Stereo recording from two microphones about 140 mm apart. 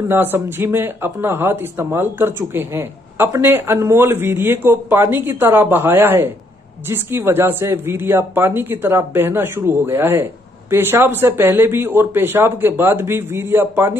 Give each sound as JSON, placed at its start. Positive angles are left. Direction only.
{"t": 0.1, "sound": "a woman's voice", "side_deg": -15}